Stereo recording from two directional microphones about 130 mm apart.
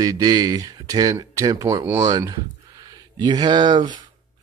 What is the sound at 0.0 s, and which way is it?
Speech, 30° right (ahead or behind).